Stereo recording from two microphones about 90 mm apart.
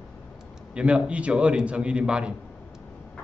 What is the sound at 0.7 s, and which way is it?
A man's voice, 10° right (ahead or behind).